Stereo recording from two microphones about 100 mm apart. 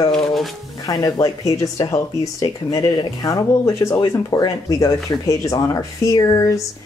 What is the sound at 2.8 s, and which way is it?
Speech, 50° left (ahead or behind).